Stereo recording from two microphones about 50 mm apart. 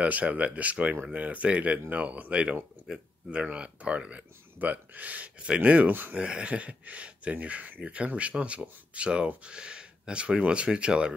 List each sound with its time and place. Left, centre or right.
0.0 s speech: right
5.9 s speech: right
6.1 s speech: right